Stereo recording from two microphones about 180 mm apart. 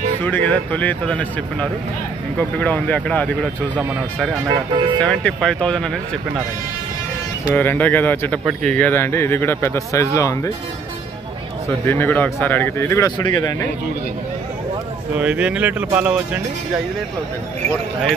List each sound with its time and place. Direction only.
0.2 s speech: 10° left (ahead or behind)
4.5 s speech: 25° right (ahead or behind)
4.9 s speech: 5° left (ahead or behind)
7.5 s speech: 10° left (ahead or behind)
11.9 s speech: 10° left (ahead or behind)
15.1 s speech: 5° right (ahead or behind)